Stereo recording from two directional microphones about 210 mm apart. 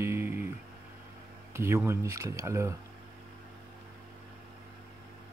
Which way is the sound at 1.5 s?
10° right (ahead or behind).